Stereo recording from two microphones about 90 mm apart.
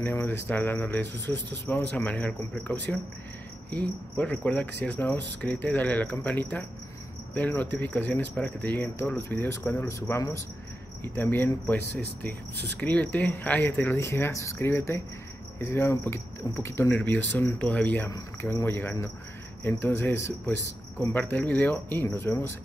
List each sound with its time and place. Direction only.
0.0 s speech: 25° left (ahead or behind)